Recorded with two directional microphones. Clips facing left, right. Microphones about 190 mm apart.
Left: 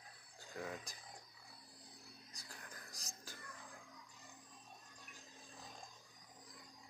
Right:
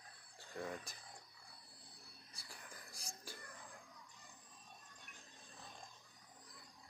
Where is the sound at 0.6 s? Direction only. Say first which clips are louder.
Right 1 dB; centre (ahead or behind).